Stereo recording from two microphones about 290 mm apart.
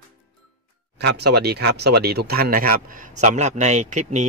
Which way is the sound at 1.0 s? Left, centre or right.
Right.